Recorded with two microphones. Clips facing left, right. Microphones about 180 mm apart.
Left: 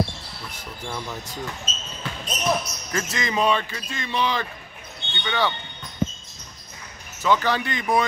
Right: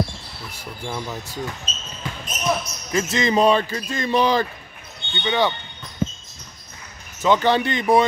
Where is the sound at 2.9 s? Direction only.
25° right (ahead or behind); by 4.5 s 40° right (ahead or behind).